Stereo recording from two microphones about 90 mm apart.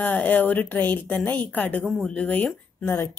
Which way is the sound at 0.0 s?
20° left (ahead or behind).